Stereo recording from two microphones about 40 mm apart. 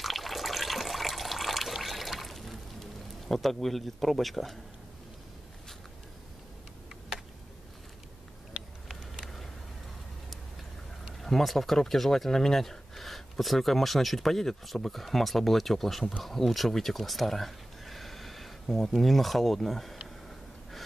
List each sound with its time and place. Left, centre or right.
0.0 s water: centre
9.2 s a sound: centre
11.1 s speech: centre